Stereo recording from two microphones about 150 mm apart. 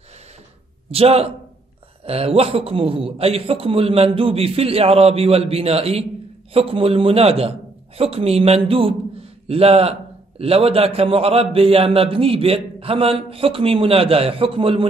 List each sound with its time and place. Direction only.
0.9 s a man's voice: 40° right (ahead or behind)